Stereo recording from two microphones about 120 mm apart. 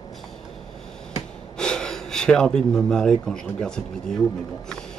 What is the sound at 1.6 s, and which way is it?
Speech, 5° left (ahead or behind).